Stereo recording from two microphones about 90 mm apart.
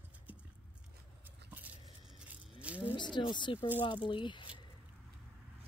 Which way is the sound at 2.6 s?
15° right (ahead or behind).